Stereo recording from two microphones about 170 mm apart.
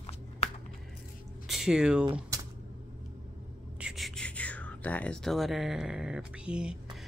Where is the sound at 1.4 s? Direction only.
Centre (ahead or behind).